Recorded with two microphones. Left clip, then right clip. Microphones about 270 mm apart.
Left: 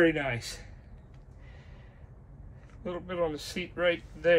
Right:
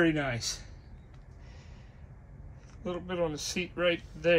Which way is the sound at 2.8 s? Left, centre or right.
Centre.